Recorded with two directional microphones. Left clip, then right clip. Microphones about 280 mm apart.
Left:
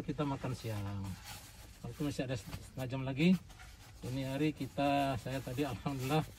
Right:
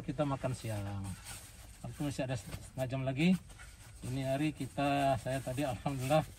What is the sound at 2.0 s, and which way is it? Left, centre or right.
Speech, centre.